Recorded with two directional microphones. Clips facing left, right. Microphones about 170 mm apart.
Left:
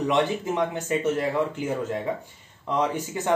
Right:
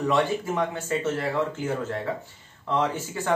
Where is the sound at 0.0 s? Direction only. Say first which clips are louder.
Even; 20° left (ahead or behind).